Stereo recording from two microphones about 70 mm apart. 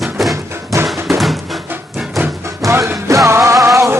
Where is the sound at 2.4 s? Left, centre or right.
Right.